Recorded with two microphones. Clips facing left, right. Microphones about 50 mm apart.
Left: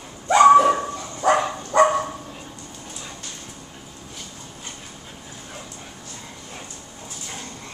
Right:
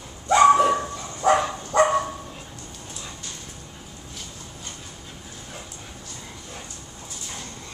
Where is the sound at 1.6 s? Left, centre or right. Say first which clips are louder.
Left 3 dB; left.